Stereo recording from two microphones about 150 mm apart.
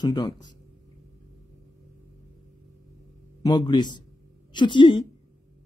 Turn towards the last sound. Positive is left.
turn(degrees=30)  # may be behind; listen again after turning